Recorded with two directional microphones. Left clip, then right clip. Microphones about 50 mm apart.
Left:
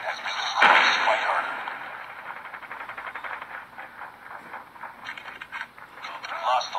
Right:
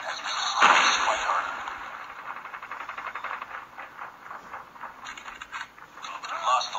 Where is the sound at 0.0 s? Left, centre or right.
Centre.